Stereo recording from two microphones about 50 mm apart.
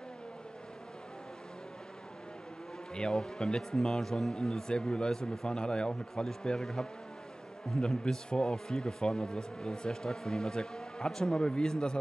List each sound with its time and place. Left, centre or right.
2.9 s speech: centre